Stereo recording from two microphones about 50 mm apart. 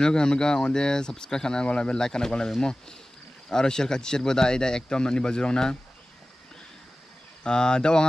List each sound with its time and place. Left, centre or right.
0.0 s speech: centre
7.4 s speech: centre